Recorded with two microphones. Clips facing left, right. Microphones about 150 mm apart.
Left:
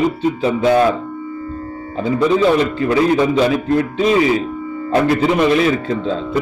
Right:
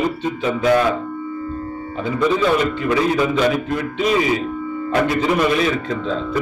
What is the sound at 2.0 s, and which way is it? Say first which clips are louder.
A man's voice: left 4 dB; 30° left (ahead or behind).